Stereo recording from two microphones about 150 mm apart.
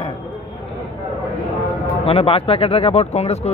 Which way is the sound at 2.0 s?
40° left (ahead or behind).